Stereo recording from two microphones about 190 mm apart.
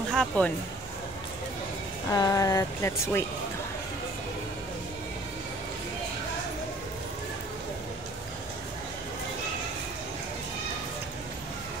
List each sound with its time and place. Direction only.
0.1 s speech: centre (ahead or behind)
2.1 s speech: 20° left (ahead or behind)